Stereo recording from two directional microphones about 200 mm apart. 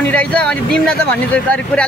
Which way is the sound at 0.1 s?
5° left (ahead or behind).